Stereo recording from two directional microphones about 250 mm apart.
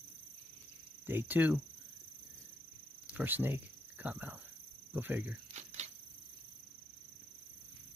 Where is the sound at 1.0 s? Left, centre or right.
Centre.